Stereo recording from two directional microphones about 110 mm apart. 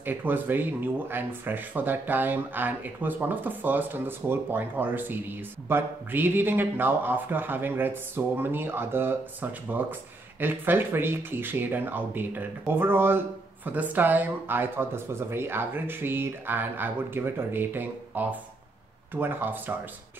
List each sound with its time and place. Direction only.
0.0 s speech: 20° right (ahead or behind)